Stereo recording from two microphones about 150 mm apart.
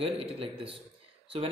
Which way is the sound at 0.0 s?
40° right (ahead or behind).